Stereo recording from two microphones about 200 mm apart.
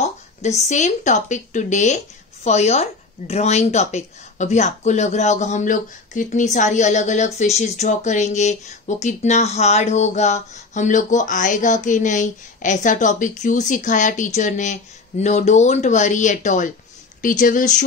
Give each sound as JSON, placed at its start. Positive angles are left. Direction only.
{"t": 0.0, "sound": "a woman's voice", "side_deg": 35}